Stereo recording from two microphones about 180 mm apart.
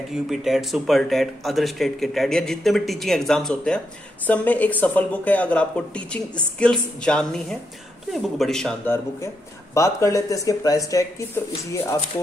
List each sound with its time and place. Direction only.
0.1 s speech: centre (ahead or behind)
9.8 s speech: 15° left (ahead or behind)